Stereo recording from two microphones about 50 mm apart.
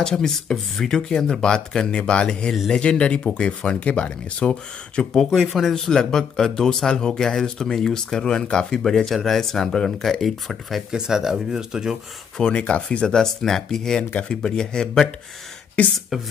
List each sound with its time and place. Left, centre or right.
0.0 s speech: centre
5.1 s speech: centre
10.9 s speech: centre
12.5 s speech: left
15.8 s speech: left